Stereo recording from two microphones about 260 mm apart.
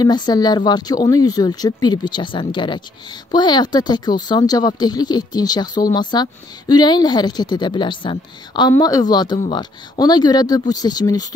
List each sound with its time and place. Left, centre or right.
0.0 s a woman's voice: centre